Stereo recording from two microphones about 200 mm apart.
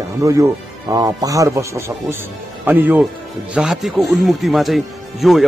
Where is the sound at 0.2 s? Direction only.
15° right (ahead or behind).